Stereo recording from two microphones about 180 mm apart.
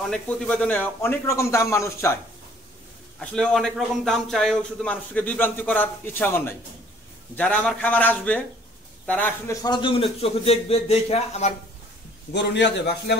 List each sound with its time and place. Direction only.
0.0 s a man's voice: 5° left (ahead or behind)
3.2 s a man's voice: 5° left (ahead or behind); by 11.5 s 35° left (ahead or behind)
12.3 s a man's voice: 75° left (ahead or behind)